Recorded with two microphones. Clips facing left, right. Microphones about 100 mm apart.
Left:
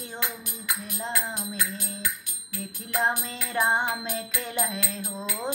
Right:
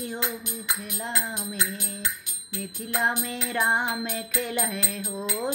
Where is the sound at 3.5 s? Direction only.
25° left (ahead or behind).